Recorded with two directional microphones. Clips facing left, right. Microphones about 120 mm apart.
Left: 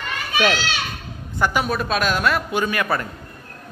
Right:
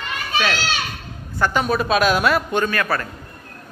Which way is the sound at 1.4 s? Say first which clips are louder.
Right 1 dB; 10° left (ahead or behind).